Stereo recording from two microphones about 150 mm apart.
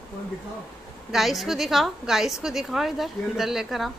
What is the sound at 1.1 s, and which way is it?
A woman's voice, centre (ahead or behind).